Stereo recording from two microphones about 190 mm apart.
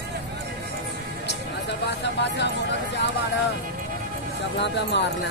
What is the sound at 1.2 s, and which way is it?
Music, 65° left (ahead or behind).